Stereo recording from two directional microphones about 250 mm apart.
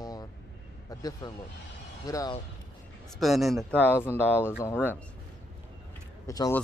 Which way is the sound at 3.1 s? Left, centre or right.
Centre.